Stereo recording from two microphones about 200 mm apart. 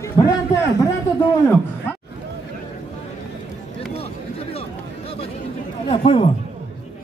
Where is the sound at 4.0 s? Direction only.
30° left (ahead or behind).